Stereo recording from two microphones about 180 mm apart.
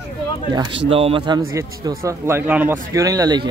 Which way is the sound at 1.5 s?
15° right (ahead or behind).